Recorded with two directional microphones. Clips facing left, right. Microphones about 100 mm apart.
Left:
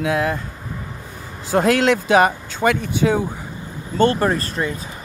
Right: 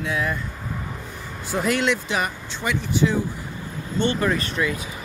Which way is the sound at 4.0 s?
35° left (ahead or behind).